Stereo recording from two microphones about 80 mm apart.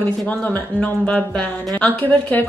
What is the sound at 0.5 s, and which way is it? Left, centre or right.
A woman's voice, centre.